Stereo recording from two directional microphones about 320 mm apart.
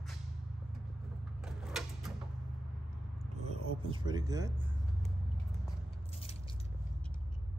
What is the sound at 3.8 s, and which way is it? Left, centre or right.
Speech, centre.